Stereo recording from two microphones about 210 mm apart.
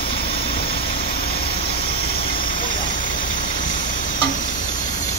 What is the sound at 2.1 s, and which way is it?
Vehicle, 45° left (ahead or behind).